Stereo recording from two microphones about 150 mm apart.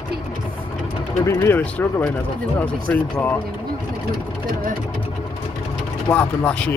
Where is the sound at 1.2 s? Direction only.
15° left (ahead or behind).